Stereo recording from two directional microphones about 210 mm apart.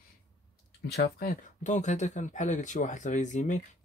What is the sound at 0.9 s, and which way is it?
Speech, 45° left (ahead or behind).